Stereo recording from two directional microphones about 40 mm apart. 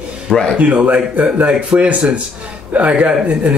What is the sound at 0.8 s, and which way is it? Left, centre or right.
Speech, right.